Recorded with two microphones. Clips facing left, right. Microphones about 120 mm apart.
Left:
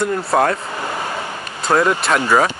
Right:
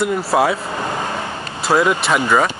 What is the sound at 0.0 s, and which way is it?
Speech, 5° right (ahead or behind).